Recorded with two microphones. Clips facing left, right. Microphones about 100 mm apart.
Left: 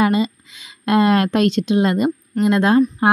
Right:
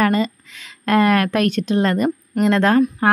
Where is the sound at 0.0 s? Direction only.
15° left (ahead or behind).